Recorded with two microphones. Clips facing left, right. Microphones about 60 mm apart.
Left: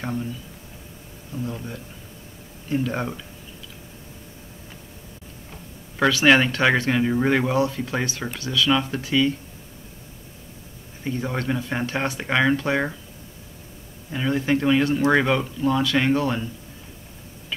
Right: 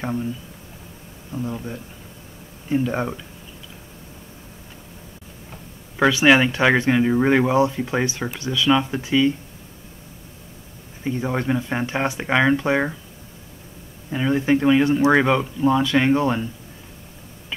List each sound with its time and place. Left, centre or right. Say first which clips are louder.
0.0 s speech: right 3 dB; centre
1.3 s speech: right 3 dB; centre
5.9 s speech: right 2 dB; centre
11.1 s speech: right 3 dB; centre
14.1 s speech: right 3 dB; centre